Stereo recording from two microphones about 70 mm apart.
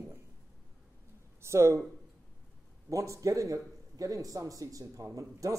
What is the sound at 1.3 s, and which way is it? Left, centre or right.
Speech, right.